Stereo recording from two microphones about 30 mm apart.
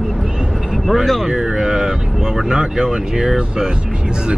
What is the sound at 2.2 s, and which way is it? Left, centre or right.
Speech, centre.